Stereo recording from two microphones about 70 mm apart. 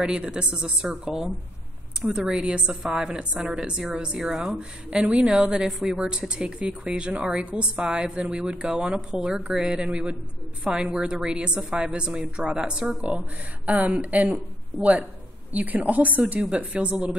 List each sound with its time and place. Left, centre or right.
0.0 s speech: centre
4.3 s speech: centre
4.6 s a woman's voice: centre